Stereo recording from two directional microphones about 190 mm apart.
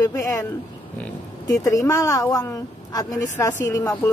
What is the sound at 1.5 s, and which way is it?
A woman's voice, 15° left (ahead or behind).